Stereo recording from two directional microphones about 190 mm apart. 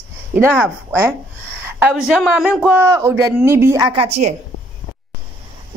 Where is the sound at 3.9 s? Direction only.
30° right (ahead or behind).